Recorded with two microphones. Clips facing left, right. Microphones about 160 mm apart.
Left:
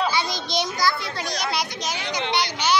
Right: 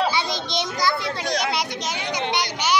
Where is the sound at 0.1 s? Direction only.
25° right (ahead or behind).